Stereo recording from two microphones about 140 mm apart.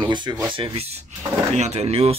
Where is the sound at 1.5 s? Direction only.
50° right (ahead or behind).